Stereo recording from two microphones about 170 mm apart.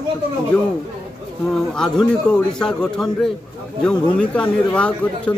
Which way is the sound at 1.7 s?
5° left (ahead or behind).